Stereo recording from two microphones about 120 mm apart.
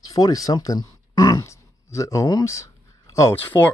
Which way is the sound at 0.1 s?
30° left (ahead or behind).